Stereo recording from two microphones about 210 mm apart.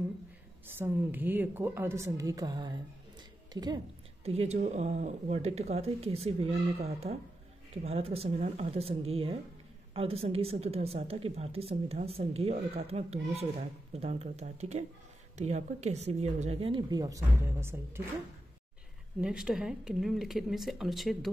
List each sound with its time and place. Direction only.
0.7 s a woman's voice: 10° right (ahead or behind)
19.2 s speech: 5° right (ahead or behind)